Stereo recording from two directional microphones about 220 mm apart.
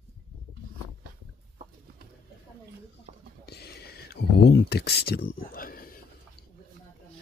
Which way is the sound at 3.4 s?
45° left (ahead or behind).